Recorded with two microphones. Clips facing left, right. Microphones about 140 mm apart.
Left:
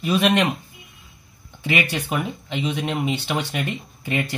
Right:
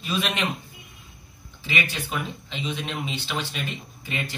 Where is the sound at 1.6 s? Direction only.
60° left (ahead or behind).